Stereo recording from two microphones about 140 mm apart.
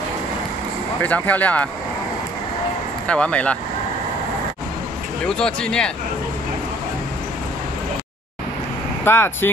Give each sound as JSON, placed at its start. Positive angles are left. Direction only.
{"t": 1.0, "sound": "speech", "side_deg": 10}
{"t": 3.1, "sound": "speech", "side_deg": 10}
{"t": 5.2, "sound": "speech", "side_deg": 5}
{"t": 9.0, "sound": "speech", "side_deg": 15}